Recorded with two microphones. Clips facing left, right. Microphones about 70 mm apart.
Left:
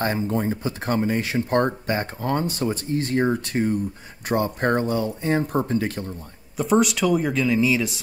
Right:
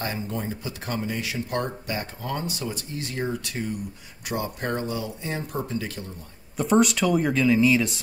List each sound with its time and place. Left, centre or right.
0.0 s speech: left
6.5 s speech: centre